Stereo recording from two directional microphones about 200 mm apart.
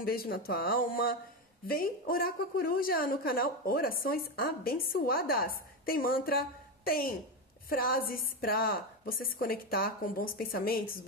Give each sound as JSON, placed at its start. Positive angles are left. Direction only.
{"t": 0.0, "sound": "a woman's voice", "side_deg": 50}